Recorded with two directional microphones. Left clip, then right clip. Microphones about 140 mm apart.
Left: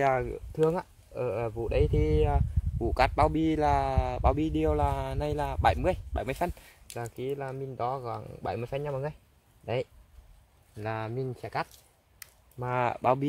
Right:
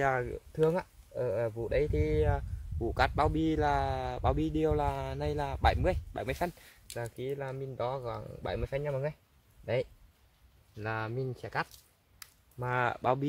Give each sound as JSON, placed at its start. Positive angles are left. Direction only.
{"t": 0.0, "sound": "speech", "side_deg": 35}
{"t": 10.8, "sound": "speech", "side_deg": 20}